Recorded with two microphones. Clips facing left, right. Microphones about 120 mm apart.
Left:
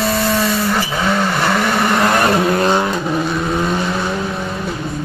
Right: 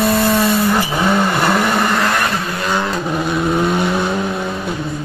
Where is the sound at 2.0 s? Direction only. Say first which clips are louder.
Left 3 dB; 25° left (ahead or behind).